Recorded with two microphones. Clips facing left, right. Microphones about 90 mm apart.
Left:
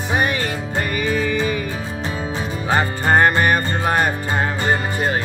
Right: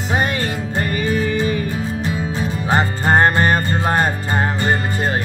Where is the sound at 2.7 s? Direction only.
25° right (ahead or behind).